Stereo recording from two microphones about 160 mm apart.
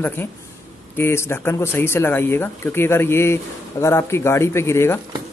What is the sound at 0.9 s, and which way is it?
Speech, 15° left (ahead or behind).